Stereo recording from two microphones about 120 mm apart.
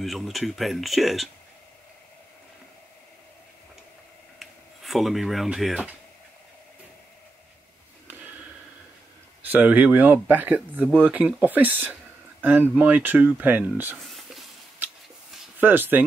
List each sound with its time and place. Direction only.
0.0 s speech: centre (ahead or behind)
4.4 s speech: centre (ahead or behind)
9.4 s speech: 15° right (ahead or behind)
14.0 s a sound: centre (ahead or behind)
15.6 s speech: 15° right (ahead or behind)